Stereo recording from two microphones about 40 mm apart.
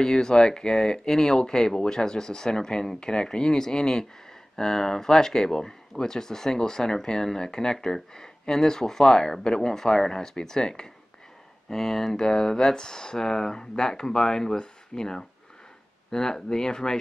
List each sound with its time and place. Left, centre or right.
0.0 s speech: centre